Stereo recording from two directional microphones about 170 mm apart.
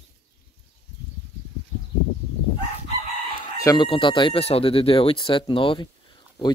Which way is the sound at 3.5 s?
25° left (ahead or behind).